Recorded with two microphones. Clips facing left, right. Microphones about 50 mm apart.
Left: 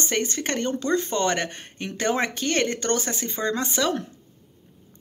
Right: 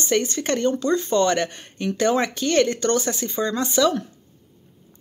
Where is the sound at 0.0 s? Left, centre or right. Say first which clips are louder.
Right 4 dB; left.